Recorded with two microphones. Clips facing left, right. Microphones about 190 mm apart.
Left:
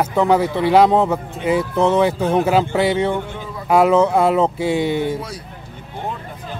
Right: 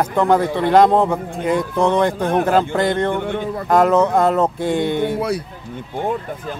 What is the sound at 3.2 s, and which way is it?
Speech, 65° right (ahead or behind).